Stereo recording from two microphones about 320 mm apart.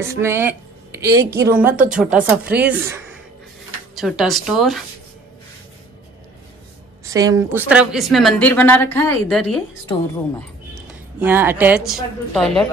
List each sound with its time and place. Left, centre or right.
0.0 s a woman's voice: centre
1.7 s speech: right
2.0 s a woman's voice: centre
7.1 s a woman's voice: centre
10.7 s a woman's voice: centre